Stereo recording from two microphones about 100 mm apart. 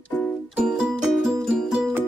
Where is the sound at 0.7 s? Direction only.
5° right (ahead or behind).